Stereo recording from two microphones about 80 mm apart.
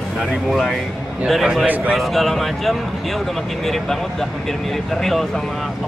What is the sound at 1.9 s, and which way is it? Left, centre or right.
Speech, centre.